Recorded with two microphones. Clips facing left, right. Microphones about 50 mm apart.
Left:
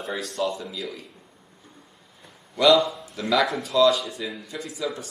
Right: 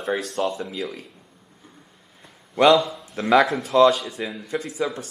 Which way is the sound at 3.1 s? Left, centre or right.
Right.